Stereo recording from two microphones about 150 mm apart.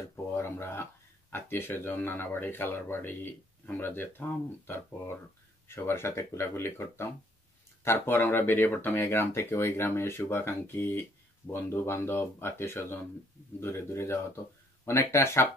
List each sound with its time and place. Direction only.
0.0 s speech: 20° left (ahead or behind)